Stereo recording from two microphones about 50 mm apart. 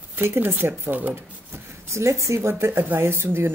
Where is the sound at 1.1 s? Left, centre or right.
Right.